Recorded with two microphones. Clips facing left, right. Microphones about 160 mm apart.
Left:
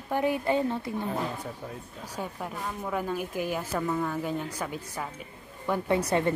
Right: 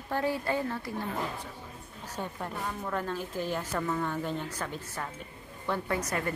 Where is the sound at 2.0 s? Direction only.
10° left (ahead or behind).